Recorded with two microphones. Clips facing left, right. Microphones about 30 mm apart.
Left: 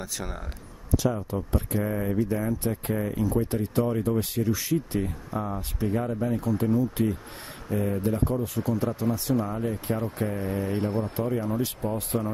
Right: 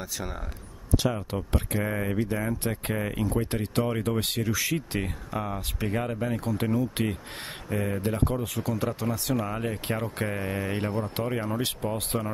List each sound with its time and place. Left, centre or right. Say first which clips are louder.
0.0 s speech: even; centre
1.3 s speech: left 1 dB; right
1.8 s speech: left 2 dB; right
4.2 s speech: left 1 dB; right
5.9 s speech: left 1 dB; right
12.1 s speech: left 3 dB; right